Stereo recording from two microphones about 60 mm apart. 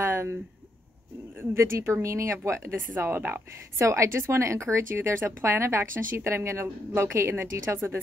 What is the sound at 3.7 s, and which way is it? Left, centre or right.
A woman's voice, right.